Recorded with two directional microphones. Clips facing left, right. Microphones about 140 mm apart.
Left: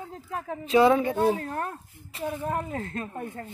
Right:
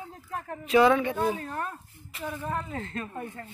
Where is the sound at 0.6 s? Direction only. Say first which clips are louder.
Left 1 dB; 30° left (ahead or behind).